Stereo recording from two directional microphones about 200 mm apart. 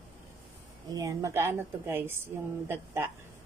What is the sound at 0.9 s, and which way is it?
A woman's voice, 15° right (ahead or behind).